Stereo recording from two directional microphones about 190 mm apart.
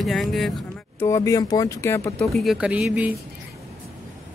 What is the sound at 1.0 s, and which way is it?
Speech, 15° left (ahead or behind).